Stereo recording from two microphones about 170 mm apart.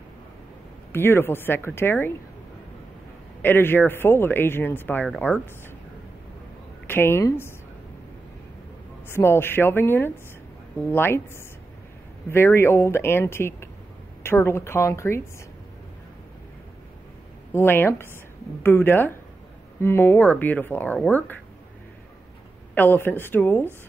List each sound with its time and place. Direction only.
0.9 s speech: 15° left (ahead or behind)
3.4 s speech: 10° left (ahead or behind)
6.9 s speech: 15° left (ahead or behind)
9.1 s speech: 15° left (ahead or behind)
17.5 s speech: 15° left (ahead or behind)
22.8 s speech: 10° left (ahead or behind)